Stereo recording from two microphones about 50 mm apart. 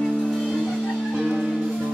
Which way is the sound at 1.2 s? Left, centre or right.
Centre.